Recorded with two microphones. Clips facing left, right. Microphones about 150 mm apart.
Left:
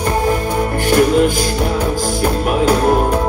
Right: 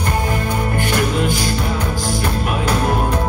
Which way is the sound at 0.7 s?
45° left (ahead or behind).